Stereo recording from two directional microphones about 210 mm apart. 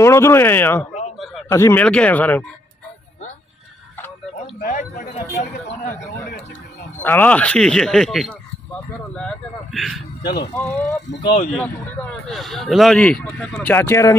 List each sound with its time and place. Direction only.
0.0 s speech: 15° left (ahead or behind)
4.4 s speech: 35° left (ahead or behind)
6.2 s a sound: 50° left (ahead or behind)
7.0 s speech: 10° left (ahead or behind)
10.2 s speech: 50° left (ahead or behind)
10.5 s speech: 15° left (ahead or behind)